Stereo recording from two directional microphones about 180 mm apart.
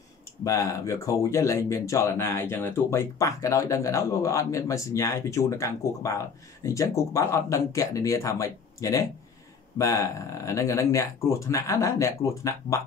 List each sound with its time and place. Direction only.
0.4 s speech: 20° left (ahead or behind)